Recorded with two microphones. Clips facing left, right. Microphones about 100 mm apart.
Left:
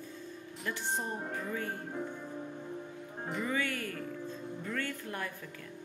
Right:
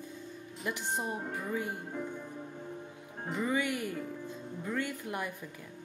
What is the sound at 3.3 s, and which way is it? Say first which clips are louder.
Speech: right 3 dB; 15° right (ahead or behind).